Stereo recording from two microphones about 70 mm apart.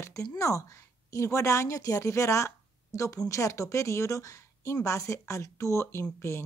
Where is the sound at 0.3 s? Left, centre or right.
Left.